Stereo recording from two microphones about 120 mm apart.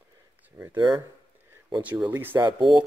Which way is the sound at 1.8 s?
15° right (ahead or behind).